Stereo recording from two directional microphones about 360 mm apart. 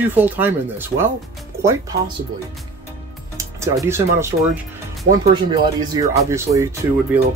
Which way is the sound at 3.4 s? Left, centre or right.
Centre.